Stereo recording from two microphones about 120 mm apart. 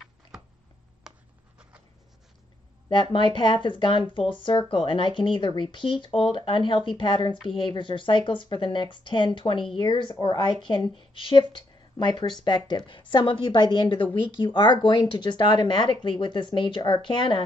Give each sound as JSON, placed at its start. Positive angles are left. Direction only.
{"t": 1.1, "sound": "writing", "side_deg": -5}
{"t": 2.9, "sound": "speech", "side_deg": 40}